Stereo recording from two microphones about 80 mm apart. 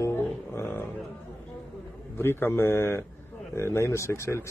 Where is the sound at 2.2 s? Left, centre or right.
Left.